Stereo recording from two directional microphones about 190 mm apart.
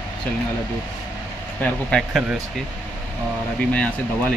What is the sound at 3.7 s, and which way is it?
Speech, 5° left (ahead or behind).